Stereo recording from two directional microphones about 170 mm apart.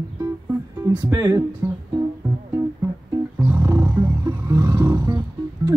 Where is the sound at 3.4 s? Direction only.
10° right (ahead or behind).